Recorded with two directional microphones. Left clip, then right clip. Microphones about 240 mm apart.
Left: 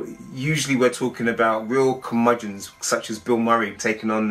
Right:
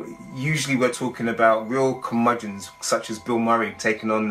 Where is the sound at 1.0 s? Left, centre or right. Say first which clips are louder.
Right 1 dB; centre.